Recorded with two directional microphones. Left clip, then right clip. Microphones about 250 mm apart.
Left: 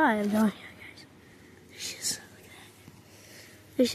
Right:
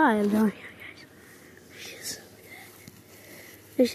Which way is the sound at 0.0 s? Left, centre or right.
Centre.